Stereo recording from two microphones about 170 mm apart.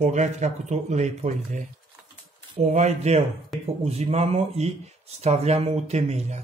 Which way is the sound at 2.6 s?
45° right (ahead or behind).